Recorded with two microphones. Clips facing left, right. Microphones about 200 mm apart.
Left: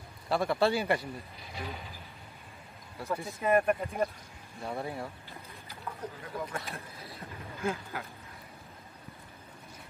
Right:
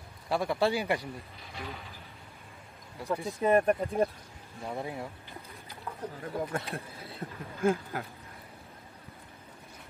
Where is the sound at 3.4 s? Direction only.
30° right (ahead or behind).